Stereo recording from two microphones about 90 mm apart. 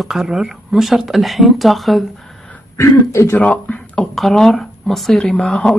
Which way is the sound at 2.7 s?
30° left (ahead or behind).